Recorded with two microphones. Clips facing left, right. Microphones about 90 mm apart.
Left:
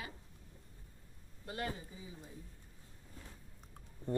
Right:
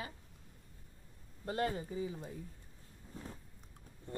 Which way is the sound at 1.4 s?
35° right (ahead or behind).